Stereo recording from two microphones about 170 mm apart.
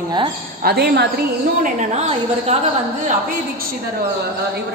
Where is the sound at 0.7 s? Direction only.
70° right (ahead or behind).